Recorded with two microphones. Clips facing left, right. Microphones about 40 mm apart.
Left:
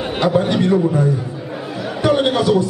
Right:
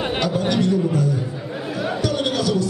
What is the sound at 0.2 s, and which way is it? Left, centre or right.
Speech, left.